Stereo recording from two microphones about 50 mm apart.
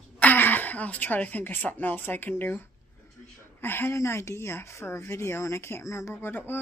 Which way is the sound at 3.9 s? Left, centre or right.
Left.